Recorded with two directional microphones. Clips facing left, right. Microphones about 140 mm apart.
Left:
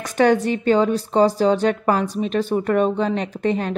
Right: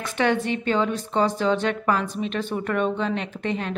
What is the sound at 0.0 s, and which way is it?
A woman's voice, 40° left (ahead or behind).